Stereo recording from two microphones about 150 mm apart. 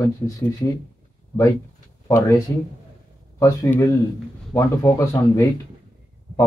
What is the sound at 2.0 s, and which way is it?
Speech, 20° left (ahead or behind).